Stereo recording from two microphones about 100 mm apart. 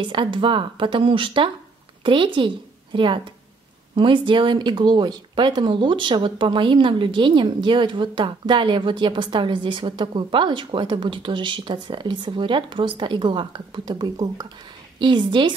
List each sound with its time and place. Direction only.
0.0 s a woman's voice: 55° right (ahead or behind); by 14.5 s 40° right (ahead or behind)
15.0 s speech: 50° right (ahead or behind)